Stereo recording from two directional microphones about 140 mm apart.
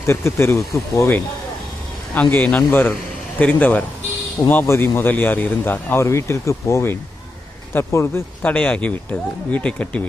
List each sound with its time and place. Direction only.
0.0 s a man's voice: 20° left (ahead or behind)